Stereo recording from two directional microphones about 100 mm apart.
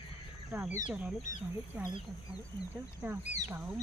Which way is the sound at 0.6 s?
5° right (ahead or behind).